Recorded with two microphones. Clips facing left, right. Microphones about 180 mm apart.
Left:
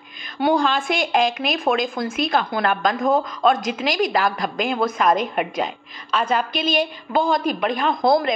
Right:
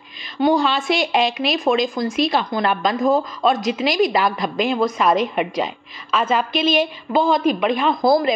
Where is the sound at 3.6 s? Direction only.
45° left (ahead or behind).